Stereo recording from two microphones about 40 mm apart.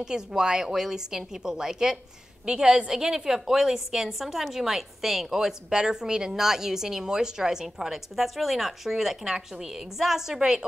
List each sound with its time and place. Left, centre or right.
0.0 s a woman's voice: centre